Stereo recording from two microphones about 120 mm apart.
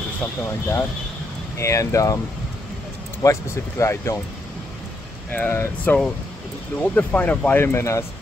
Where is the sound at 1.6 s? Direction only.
25° left (ahead or behind).